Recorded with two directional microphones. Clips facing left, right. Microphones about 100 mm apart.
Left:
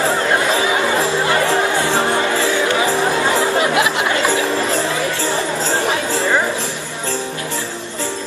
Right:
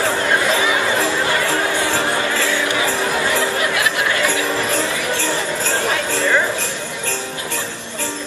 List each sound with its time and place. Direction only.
3.3 s music: 25° left (ahead or behind)